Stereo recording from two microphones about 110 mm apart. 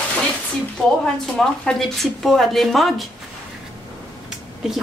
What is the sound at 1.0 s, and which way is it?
A woman's voice, 5° left (ahead or behind).